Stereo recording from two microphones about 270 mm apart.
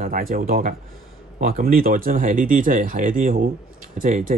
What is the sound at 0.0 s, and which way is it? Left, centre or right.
Speech, right.